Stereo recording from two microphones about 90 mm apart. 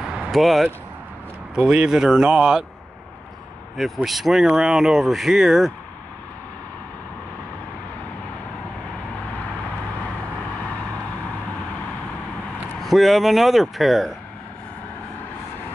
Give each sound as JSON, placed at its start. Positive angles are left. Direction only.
{"t": 0.0, "sound": "a sound", "side_deg": -10}
{"t": 0.3, "sound": "speech", "side_deg": 0}
{"t": 3.7, "sound": "speech", "side_deg": 0}
{"t": 12.8, "sound": "speech", "side_deg": 0}